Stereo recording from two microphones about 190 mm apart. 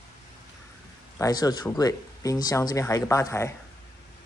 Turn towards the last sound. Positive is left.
turn(degrees=15)  # may be behind; listen again after turning